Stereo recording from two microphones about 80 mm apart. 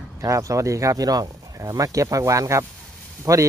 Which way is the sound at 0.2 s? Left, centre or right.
Right.